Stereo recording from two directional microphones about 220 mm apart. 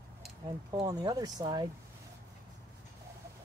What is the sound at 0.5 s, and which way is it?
Speech, 15° right (ahead or behind).